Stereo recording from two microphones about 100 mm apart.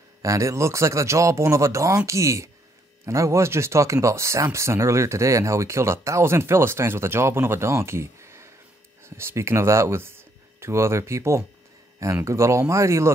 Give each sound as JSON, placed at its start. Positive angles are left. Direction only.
{"t": 0.2, "sound": "speech", "side_deg": -30}